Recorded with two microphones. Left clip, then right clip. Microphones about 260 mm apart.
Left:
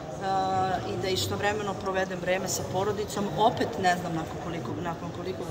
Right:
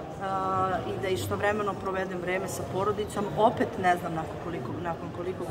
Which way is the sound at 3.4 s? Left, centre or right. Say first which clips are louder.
Even; centre.